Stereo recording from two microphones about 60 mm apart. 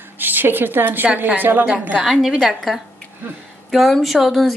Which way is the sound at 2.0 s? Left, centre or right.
Centre.